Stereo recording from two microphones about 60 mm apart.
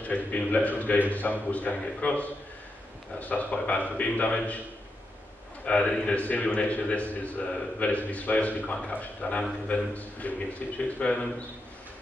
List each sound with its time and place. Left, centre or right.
0.0 s a man's voice: left
5.7 s a man's voice: centre